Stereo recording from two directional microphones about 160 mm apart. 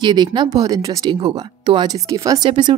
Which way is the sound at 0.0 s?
30° right (ahead or behind).